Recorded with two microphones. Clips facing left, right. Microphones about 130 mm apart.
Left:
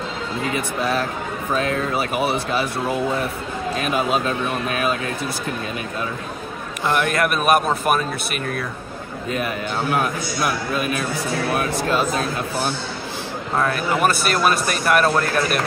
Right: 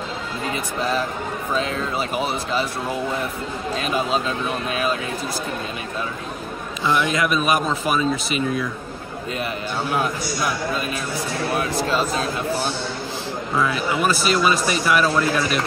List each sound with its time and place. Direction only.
1.5 s a man's voice: 55° left (ahead or behind)
6.9 s a man's voice: 55° left (ahead or behind)
9.9 s a man's voice: 55° left (ahead or behind)
13.6 s a man's voice: 55° left (ahead or behind)